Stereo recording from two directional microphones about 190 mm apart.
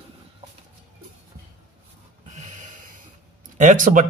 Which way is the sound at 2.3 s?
40° right (ahead or behind).